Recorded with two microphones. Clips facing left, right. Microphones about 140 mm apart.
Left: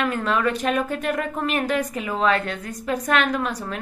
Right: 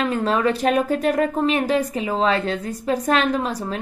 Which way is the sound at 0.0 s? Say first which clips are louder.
Right 2 dB; 30° right (ahead or behind).